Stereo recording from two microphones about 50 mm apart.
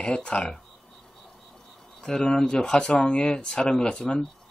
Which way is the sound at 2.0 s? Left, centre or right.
Centre.